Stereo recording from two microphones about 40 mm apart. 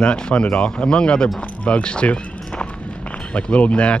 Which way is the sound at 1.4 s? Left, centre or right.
Left.